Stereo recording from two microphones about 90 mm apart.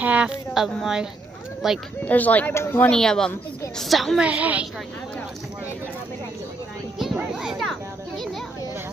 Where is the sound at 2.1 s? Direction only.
15° left (ahead or behind).